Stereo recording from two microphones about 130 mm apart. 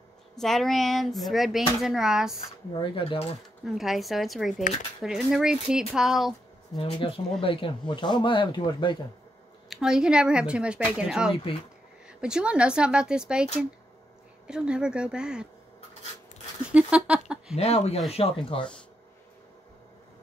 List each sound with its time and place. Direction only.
0.4 s speech: centre (ahead or behind)
2.7 s speech: 40° left (ahead or behind)
3.6 s speech: centre (ahead or behind)
6.8 s speech: 40° left (ahead or behind)
9.7 s speech: 5° right (ahead or behind)
16.6 s speech: 10° right (ahead or behind)
17.6 s speech: 55° left (ahead or behind)